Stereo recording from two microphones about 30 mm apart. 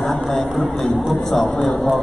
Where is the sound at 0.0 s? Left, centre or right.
Centre.